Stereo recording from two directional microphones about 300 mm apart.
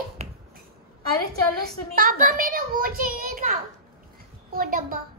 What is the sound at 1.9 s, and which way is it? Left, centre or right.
A child's voice, right.